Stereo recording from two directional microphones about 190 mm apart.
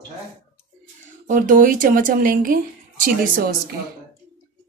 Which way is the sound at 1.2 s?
45° right (ahead or behind).